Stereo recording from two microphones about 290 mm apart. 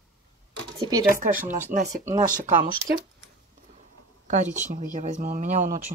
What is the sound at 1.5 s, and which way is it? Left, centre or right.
Speech, right.